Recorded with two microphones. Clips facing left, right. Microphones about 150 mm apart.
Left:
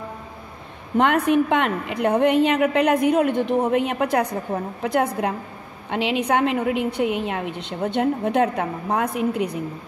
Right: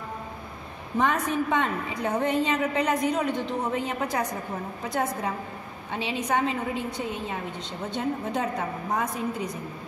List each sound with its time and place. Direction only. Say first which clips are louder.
0.9 s a woman's voice: left 7 dB; 65° left (ahead or behind)
5.9 s a woman's voice: left 7 dB; 75° left (ahead or behind)